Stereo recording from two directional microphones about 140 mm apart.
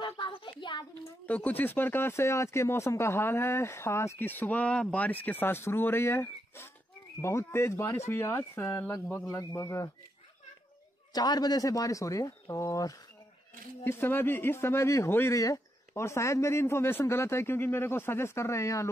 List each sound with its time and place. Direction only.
0.0 s a sound: 35° left (ahead or behind)
1.2 s speech: 10° left (ahead or behind)
11.1 s speech: 30° left (ahead or behind)